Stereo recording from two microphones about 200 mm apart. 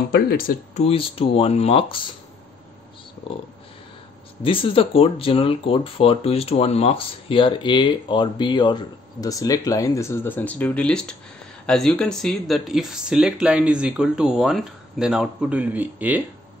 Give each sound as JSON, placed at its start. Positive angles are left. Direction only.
{"t": 0.1, "sound": "speech", "side_deg": 45}
{"t": 0.8, "sound": "speech", "side_deg": 30}
{"t": 4.4, "sound": "speech", "side_deg": 25}